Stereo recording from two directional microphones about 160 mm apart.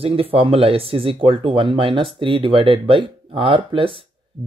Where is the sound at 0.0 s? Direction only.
35° right (ahead or behind).